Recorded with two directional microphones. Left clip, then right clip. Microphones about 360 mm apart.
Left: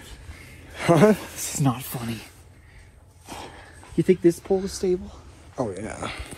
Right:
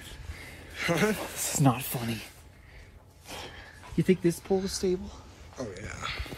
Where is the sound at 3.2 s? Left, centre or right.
Centre.